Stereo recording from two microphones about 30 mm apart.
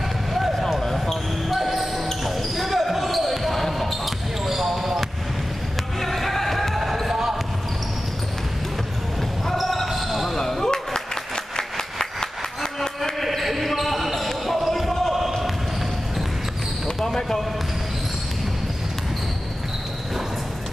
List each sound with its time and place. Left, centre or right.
0.3 s run: centre
1.5 s basketball bounce: centre
4.5 s basketball bounce: centre
5.9 s music: centre
9.6 s basketball bounce: centre
10.3 s basketball bounce: centre
11.5 s a sound: centre
13.2 s basketball bounce: centre
17.0 s basketball bounce: centre